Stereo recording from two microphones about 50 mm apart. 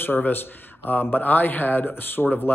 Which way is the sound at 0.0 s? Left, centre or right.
Left.